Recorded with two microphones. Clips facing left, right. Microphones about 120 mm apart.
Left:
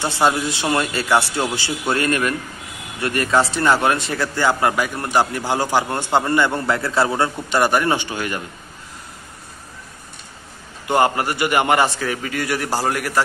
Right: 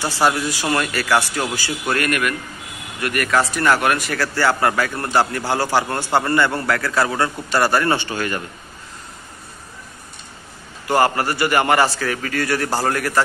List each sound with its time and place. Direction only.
0.0 s a man's voice: 20° left (ahead or behind)
10.9 s speech: 20° left (ahead or behind)